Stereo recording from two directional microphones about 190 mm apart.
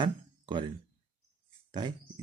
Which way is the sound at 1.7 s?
20° right (ahead or behind).